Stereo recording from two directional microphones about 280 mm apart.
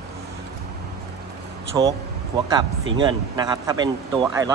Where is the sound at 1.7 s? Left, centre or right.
Centre.